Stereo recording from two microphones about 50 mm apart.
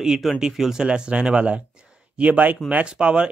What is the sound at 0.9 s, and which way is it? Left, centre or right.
Speech, right.